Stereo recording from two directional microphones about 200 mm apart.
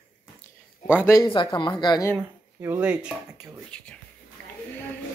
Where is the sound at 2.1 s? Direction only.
10° right (ahead or behind).